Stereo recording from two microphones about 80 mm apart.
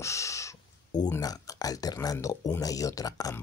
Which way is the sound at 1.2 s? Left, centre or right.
Left.